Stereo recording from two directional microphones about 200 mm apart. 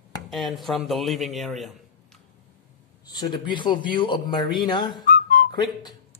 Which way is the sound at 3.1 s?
20° left (ahead or behind).